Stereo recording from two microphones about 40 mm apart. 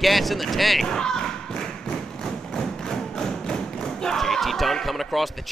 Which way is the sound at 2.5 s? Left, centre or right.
Centre.